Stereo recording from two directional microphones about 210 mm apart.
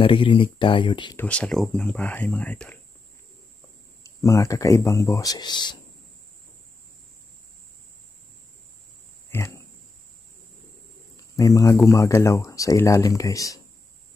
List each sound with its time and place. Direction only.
0.0 s speech: 25° left (ahead or behind)
1.1 s speech: 5° left (ahead or behind)
4.0 s speech: 15° left (ahead or behind)
9.3 s speech: 15° left (ahead or behind)
11.3 s speech: 15° left (ahead or behind)